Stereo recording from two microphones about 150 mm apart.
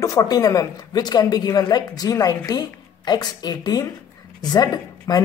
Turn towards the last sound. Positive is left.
turn(degrees=25)  # may be behind; listen again after turning